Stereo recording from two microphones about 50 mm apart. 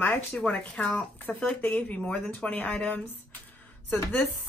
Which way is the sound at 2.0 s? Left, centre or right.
Centre.